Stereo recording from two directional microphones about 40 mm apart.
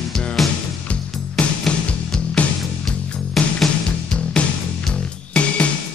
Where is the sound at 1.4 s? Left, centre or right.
Left.